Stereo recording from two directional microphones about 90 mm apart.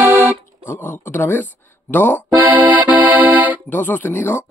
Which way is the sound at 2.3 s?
20° right (ahead or behind).